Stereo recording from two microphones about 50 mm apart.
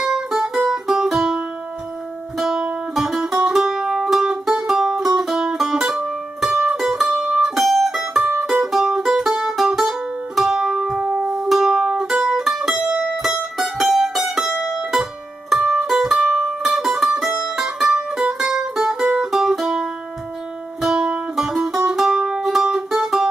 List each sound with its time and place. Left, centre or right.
0.1 s music: centre
2.3 s music: centre
20.9 s music: centre